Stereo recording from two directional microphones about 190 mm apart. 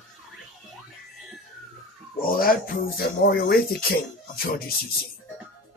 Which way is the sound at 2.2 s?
50° left (ahead or behind).